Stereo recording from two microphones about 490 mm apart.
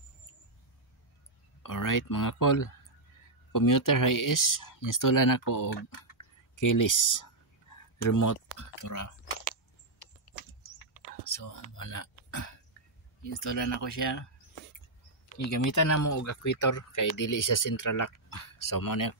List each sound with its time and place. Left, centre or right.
1.6 s speech: left
11.7 s speech: left
15.7 s speech: left